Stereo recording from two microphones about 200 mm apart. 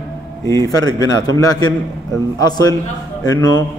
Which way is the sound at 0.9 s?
20° left (ahead or behind).